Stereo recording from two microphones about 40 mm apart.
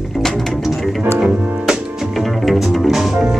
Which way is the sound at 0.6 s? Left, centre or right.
Centre.